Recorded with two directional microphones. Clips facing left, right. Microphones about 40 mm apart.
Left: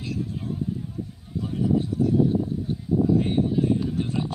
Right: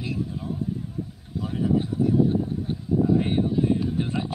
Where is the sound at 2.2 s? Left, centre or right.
Right.